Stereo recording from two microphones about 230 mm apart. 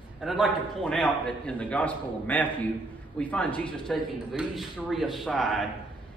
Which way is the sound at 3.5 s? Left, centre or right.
Left.